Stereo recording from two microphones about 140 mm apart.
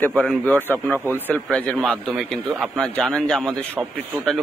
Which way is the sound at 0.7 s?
10° left (ahead or behind).